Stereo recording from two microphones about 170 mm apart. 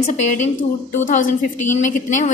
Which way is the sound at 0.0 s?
45° left (ahead or behind).